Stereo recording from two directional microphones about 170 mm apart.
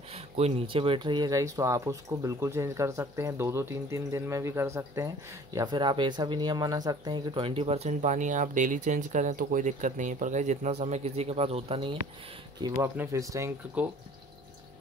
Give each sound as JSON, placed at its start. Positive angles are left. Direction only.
{"t": 0.1, "sound": "speech", "side_deg": -40}